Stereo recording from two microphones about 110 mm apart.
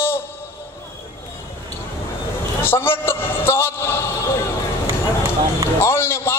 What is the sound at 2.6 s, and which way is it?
A man's voice, 20° left (ahead or behind).